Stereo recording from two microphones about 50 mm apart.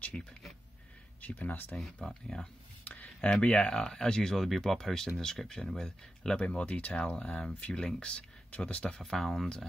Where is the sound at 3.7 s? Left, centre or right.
Centre.